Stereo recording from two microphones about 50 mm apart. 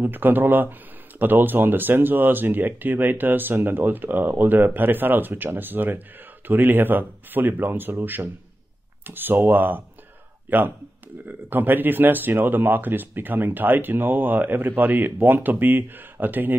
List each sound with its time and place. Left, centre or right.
0.0 s speech: right